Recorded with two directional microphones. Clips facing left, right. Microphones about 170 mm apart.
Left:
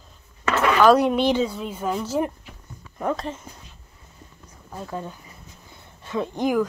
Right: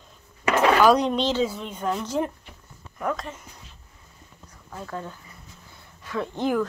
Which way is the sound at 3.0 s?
30° left (ahead or behind).